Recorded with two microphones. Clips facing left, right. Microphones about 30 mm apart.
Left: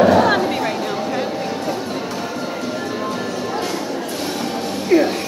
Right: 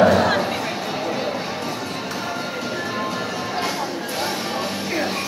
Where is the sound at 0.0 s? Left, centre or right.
Centre.